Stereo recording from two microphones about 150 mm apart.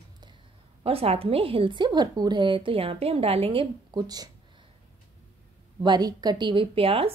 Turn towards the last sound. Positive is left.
turn(degrees=-40)  # may be behind; listen again after turning